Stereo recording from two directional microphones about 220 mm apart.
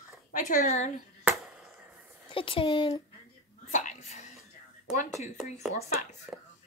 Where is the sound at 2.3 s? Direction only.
25° left (ahead or behind).